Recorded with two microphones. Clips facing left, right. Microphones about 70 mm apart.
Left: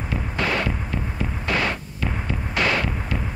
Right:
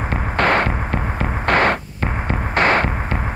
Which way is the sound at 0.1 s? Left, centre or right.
Right.